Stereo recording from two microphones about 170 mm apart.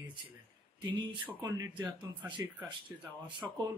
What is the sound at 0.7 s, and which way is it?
Speech, 25° right (ahead or behind).